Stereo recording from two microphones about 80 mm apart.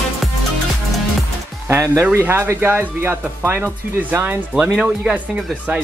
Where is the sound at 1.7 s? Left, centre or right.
Right.